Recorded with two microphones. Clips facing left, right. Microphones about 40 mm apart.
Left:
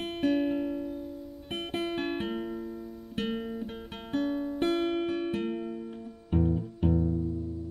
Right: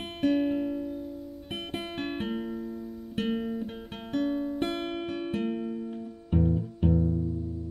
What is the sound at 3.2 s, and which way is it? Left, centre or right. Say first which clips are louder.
Guitar: right 4 dB; centre.